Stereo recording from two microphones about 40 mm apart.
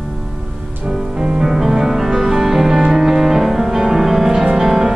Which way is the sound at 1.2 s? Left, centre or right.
Centre.